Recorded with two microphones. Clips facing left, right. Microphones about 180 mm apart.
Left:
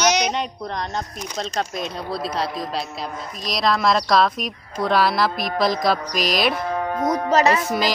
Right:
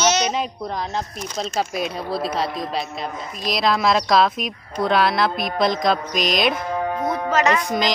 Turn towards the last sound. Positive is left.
turn(degrees=40)  # may be behind; listen again after turning